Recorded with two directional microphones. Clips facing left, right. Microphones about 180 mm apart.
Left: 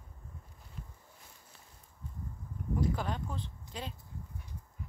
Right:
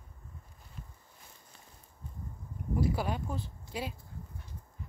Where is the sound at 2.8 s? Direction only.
10° right (ahead or behind).